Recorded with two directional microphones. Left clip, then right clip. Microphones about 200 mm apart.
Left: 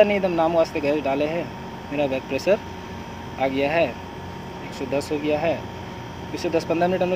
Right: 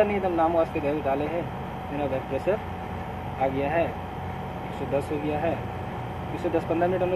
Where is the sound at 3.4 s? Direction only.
55° left (ahead or behind).